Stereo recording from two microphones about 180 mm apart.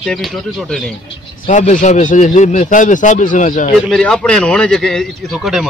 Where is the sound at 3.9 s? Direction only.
5° left (ahead or behind).